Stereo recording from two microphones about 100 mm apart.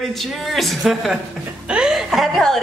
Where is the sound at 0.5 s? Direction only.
Centre (ahead or behind).